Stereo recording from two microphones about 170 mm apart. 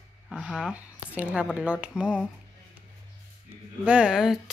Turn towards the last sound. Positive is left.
turn(degrees=-5)  # may be behind; listen again after turning